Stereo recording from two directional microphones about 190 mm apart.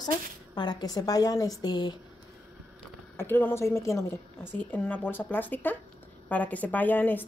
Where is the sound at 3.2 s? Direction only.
10° left (ahead or behind).